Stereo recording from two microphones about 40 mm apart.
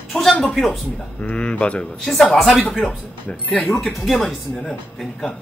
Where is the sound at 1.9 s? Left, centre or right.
Centre.